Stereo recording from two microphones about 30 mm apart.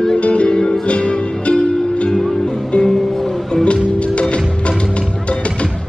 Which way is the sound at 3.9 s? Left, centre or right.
Left.